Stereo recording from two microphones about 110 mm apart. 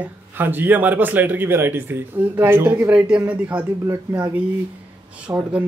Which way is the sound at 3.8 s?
30° right (ahead or behind).